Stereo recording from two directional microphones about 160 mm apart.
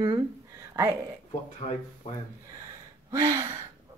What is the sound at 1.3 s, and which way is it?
Speech, 40° left (ahead or behind).